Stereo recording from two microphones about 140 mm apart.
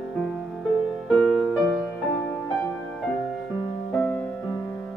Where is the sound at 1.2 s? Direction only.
Centre (ahead or behind).